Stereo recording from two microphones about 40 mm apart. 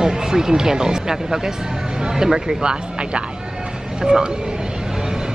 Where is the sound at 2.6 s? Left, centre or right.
Right.